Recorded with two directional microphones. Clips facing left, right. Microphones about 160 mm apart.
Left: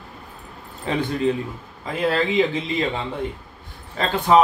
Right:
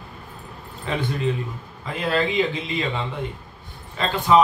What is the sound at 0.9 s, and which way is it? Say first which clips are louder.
Speech: left 3 dB; 30° left (ahead or behind).